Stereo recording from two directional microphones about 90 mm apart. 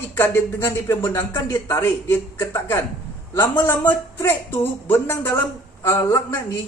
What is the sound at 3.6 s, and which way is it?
A man's voice, 25° left (ahead or behind).